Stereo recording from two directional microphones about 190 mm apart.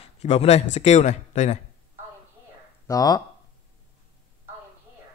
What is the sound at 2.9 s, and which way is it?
Speech, 20° left (ahead or behind).